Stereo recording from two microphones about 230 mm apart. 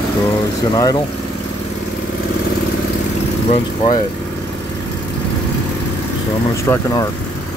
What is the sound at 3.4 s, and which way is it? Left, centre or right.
Speech, left.